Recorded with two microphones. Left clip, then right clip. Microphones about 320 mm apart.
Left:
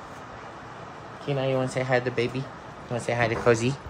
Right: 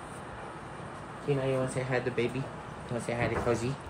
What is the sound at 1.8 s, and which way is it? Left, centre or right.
Speech, left.